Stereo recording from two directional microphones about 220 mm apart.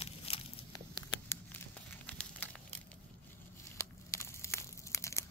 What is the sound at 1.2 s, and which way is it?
Crumpling, 10° left (ahead or behind).